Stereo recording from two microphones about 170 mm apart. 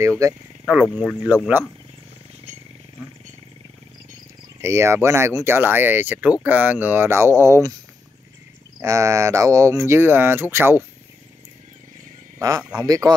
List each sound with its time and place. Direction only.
0.2 s a man's voice: 20° right (ahead or behind)
0.8 s speech: 5° right (ahead or behind)
4.6 s speech: 15° right (ahead or behind)
8.8 s speech: 20° right (ahead or behind)
12.4 s a man's voice: 20° right (ahead or behind)